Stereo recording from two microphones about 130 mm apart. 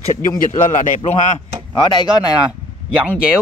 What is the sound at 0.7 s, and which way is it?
Speech, 80° left.